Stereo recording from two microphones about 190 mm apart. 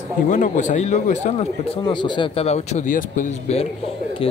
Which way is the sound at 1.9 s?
25° left (ahead or behind).